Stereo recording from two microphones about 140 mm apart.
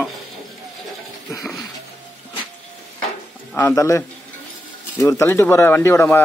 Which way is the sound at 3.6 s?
20° left (ahead or behind).